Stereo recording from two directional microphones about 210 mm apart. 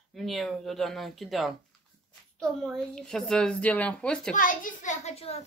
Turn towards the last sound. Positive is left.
turn(degrees=30)  # may be behind; listen again after turning